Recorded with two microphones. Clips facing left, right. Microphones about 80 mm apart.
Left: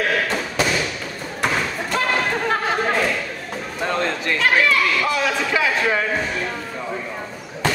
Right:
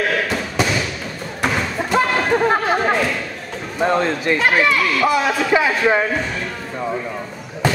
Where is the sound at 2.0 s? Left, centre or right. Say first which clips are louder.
Right 5 dB; right.